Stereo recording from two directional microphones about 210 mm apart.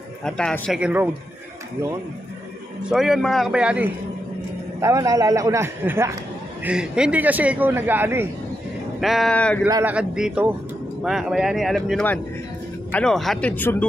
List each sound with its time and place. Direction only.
0.2 s speech: 5° left (ahead or behind)
2.9 s a man's voice: centre (ahead or behind)
9.7 s a man's voice: 15° right (ahead or behind)
9.9 s speech: 5° right (ahead or behind)